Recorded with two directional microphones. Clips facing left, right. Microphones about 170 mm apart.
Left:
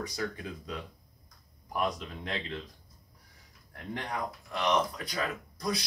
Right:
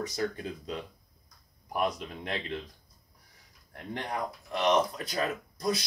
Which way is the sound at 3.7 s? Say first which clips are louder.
Right 1 dB; 25° right (ahead or behind).